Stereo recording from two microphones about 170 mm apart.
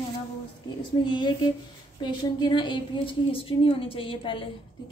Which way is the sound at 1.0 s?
25° left (ahead or behind).